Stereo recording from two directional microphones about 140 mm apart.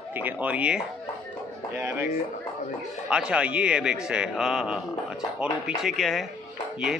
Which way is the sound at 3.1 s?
5° right (ahead or behind).